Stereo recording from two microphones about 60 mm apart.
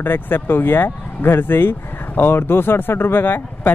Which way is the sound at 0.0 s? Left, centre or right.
Left.